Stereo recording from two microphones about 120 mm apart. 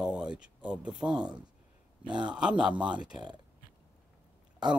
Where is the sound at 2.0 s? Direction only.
40° right (ahead or behind).